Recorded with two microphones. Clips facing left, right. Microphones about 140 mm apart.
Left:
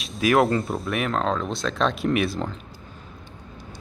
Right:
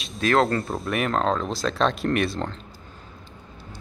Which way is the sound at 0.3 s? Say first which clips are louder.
Left 1 dB; 20° left (ahead or behind).